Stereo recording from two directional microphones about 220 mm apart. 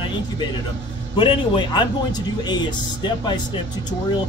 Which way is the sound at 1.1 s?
20° left (ahead or behind).